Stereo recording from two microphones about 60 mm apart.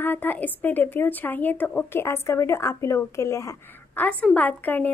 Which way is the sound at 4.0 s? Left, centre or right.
Left.